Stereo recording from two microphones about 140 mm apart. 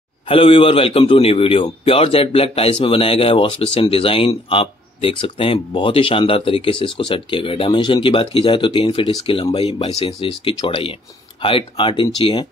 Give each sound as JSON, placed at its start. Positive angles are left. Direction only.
{"t": 0.3, "sound": "speech", "side_deg": 40}